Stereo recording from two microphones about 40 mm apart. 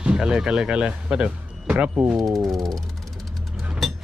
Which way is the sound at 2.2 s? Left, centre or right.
Centre.